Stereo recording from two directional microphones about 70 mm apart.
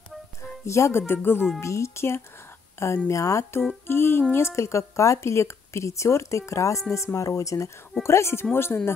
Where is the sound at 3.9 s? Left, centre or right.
Left.